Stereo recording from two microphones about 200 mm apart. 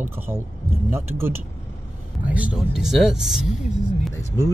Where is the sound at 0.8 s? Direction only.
10° right (ahead or behind).